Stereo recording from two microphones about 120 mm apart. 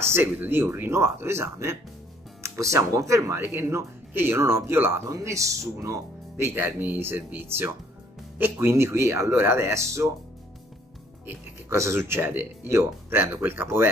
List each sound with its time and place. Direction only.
0.0 s speech: 20° right (ahead or behind)
11.2 s speech: 25° right (ahead or behind)